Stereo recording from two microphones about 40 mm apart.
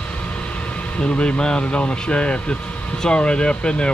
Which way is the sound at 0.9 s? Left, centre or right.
Left.